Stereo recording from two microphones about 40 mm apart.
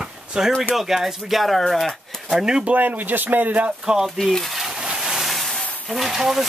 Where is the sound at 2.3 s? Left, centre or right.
Centre.